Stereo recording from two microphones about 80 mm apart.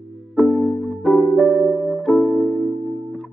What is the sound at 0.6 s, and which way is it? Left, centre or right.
Music, centre.